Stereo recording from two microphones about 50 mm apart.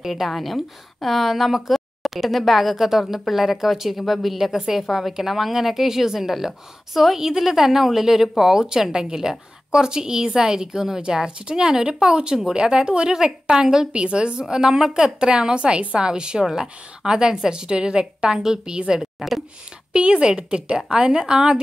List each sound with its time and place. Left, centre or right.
0.0 s a woman's voice: centre
19.9 s a woman's voice: centre